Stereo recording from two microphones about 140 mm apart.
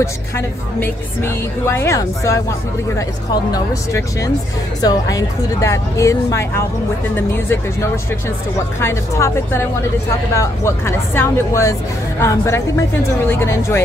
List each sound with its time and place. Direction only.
0.7 s speech: 15° left (ahead or behind)
3.5 s speech: 25° left (ahead or behind)